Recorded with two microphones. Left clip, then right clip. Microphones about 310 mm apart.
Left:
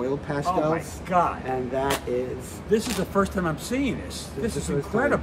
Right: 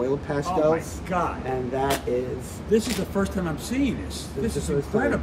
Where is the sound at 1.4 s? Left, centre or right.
Centre.